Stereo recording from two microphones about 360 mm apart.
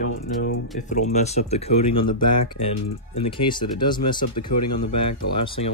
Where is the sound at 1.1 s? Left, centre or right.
Centre.